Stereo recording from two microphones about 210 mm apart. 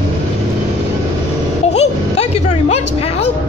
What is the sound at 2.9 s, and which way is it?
Speech, 30° left (ahead or behind).